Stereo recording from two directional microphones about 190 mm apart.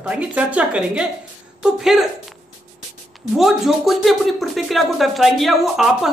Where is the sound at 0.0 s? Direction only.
5° right (ahead or behind).